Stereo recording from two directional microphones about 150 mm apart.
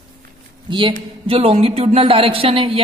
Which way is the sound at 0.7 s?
35° right (ahead or behind).